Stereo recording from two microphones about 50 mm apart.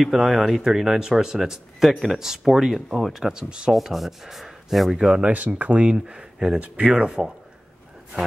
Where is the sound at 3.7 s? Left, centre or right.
Centre.